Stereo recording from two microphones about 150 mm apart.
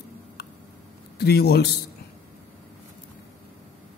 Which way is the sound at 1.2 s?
90° left.